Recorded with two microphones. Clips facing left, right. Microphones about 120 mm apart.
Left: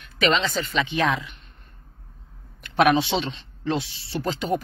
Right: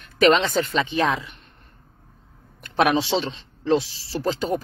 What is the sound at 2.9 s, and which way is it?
Speech, 30° right (ahead or behind).